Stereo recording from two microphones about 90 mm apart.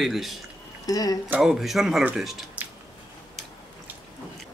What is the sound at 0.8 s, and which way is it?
Speech, 45° left (ahead or behind).